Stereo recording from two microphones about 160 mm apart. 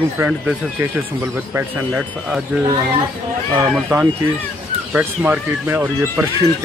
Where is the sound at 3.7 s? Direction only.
10° right (ahead or behind).